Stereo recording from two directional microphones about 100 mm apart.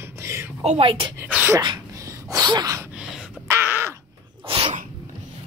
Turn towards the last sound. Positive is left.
turn(degrees=-65)  # may be behind; listen again after turning